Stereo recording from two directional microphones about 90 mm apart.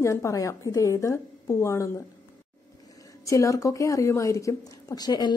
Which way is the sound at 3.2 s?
35° left (ahead or behind).